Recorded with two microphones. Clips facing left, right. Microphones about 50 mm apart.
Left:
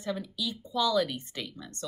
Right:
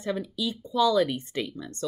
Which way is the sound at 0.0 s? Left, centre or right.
Right.